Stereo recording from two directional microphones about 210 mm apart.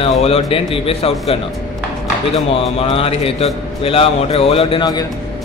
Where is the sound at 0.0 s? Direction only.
30° left (ahead or behind).